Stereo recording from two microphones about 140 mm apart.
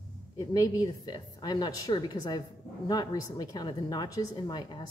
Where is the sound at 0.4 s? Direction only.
25° left (ahead or behind).